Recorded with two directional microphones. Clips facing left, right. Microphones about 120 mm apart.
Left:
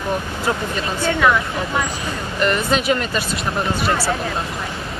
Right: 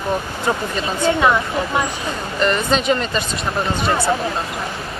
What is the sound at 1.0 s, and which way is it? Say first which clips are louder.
Speech: right 1 dB; 25° right (ahead or behind).